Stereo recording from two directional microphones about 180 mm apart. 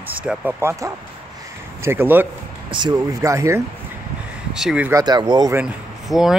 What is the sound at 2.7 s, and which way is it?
Speech, 20° right (ahead or behind).